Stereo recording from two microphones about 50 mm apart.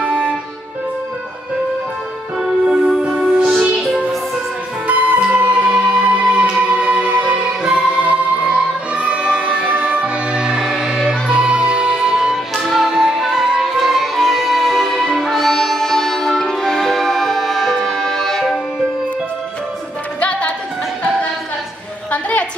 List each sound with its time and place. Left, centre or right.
2.4 s music: centre
4.8 s music: right
10.6 s music: centre
11.1 s music: centre
12.5 s music: centre
20.2 s music: left
22.1 s a sound: left